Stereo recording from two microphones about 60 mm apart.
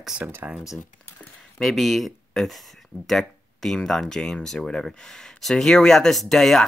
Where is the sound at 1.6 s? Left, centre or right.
Centre.